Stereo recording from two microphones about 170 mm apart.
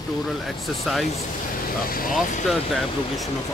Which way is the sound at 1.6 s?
55° left (ahead or behind).